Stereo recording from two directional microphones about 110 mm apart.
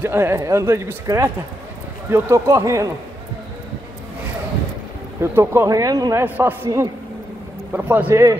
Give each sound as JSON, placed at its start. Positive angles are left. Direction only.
{"t": 0.0, "sound": "speech", "side_deg": -25}
{"t": 5.2, "sound": "speech", "side_deg": -25}
{"t": 5.7, "sound": "speech", "side_deg": -35}
{"t": 6.2, "sound": "a man's voice", "side_deg": -20}
{"t": 7.7, "sound": "a man's voice", "side_deg": -15}
{"t": 8.1, "sound": "speech", "side_deg": -30}